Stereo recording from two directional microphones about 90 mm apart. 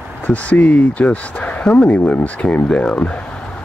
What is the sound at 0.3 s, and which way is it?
Speech, 15° left (ahead or behind).